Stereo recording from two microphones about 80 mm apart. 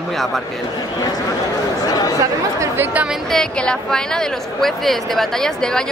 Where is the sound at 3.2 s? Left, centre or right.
Centre.